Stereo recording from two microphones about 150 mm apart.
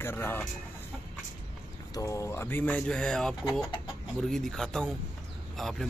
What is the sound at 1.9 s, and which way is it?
Speech, 20° left (ahead or behind).